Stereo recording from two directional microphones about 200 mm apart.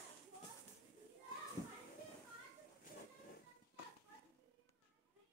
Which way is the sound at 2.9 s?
45° left (ahead or behind).